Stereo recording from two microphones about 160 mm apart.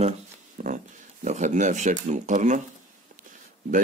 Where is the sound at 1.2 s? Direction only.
50° right (ahead or behind).